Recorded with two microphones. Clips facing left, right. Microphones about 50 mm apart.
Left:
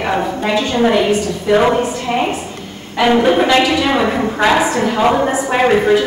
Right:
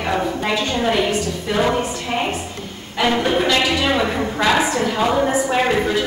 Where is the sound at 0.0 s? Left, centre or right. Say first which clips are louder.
Left 3 dB; left.